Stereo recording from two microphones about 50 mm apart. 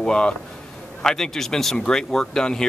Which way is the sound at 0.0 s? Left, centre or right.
Centre.